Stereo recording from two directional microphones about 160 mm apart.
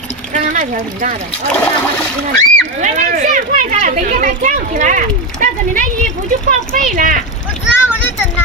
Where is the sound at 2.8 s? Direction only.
50° right (ahead or behind).